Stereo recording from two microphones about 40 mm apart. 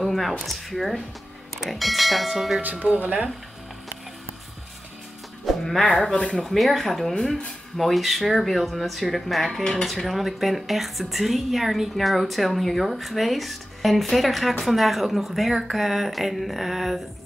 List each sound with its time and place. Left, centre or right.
0.0 s a sound: centre
0.5 s a woman's voice: centre
2.6 s speech: right
5.4 s music: centre
6.1 s speech: centre
6.4 s a woman's voice: centre
9.5 s speech: centre
9.8 s a woman's voice: centre